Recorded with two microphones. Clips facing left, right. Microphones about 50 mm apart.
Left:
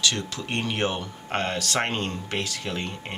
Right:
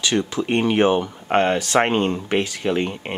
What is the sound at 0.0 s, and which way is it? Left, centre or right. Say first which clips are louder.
Speech: right 6 dB; right.